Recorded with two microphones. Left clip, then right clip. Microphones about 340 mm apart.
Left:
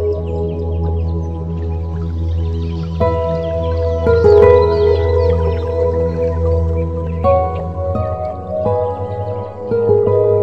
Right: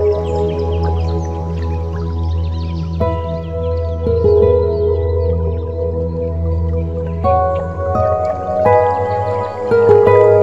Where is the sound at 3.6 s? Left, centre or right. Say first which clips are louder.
Left 2 dB; centre.